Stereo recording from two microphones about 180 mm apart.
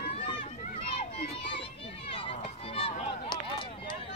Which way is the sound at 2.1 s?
30° left (ahead or behind).